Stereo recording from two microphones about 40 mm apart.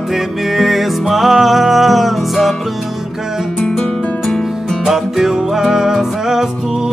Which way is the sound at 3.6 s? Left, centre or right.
Centre.